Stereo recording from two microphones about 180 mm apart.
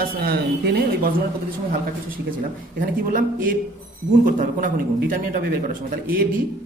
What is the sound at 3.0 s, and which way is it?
A man's voice, 50° right (ahead or behind).